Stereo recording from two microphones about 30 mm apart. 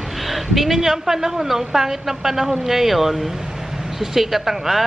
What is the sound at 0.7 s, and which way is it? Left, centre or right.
A woman's voice, centre.